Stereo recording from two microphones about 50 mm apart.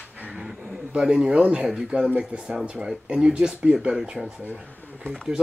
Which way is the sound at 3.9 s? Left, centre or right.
Centre.